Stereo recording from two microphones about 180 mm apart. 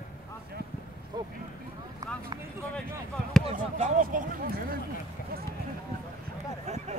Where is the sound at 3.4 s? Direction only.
40° right (ahead or behind).